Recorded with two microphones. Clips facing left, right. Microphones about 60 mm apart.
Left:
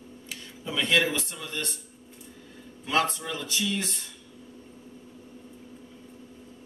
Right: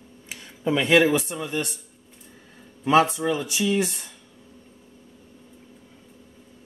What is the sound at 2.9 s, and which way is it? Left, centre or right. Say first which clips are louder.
Speech: right 8 dB; centre.